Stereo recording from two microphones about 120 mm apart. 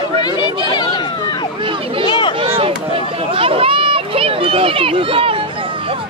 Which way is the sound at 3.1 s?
50° right (ahead or behind).